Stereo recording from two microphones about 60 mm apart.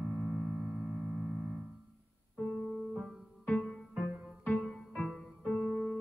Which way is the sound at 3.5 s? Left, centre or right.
Left.